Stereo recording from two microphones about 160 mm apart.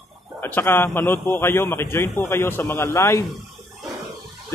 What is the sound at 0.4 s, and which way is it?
A man's voice, 15° left (ahead or behind).